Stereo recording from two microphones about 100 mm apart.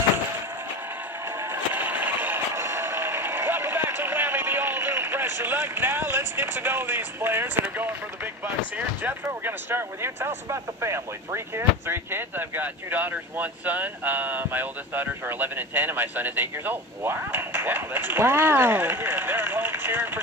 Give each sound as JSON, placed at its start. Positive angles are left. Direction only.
{"t": 1.4, "sound": "vehicle", "side_deg": -20}
{"t": 8.7, "sound": "speech", "side_deg": -20}